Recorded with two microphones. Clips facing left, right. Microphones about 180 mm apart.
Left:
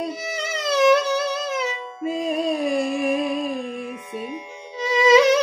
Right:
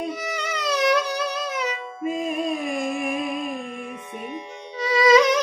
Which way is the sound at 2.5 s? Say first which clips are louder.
Left 4 dB; 35° left (ahead or behind).